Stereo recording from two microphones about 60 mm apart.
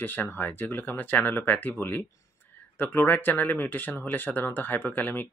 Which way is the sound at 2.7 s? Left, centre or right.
Left.